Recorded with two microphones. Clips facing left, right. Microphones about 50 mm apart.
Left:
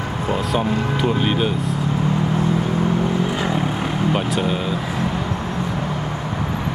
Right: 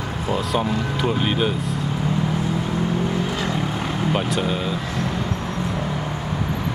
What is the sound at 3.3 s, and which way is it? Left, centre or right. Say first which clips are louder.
Vehicle: left 3 dB; centre.